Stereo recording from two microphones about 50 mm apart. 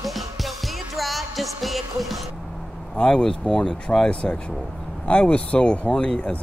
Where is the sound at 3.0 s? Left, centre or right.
Centre.